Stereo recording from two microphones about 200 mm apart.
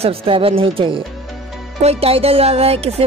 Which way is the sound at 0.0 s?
30° right (ahead or behind).